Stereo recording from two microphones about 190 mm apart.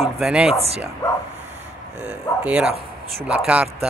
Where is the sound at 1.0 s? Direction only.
15° left (ahead or behind).